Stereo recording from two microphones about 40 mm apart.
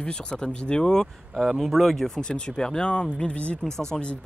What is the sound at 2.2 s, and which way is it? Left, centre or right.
Speech, left.